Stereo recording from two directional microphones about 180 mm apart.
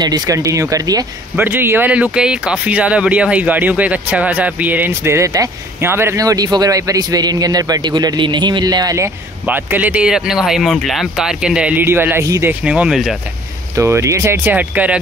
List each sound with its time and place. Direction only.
0.0 s speech: 20° right (ahead or behind); by 13.1 s 5° right (ahead or behind)
13.7 s speech: 15° right (ahead or behind)